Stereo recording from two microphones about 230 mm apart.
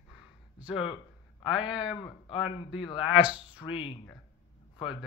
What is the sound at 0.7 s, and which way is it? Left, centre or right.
Speech, left.